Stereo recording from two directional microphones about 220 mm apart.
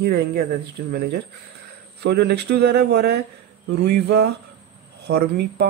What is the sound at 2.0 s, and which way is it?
Speech, 50° right (ahead or behind).